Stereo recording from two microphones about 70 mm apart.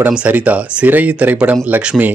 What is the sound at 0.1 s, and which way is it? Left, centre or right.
Speech, centre.